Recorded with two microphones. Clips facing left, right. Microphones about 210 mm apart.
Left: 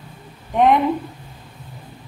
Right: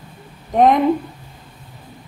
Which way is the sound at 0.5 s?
40° right (ahead or behind).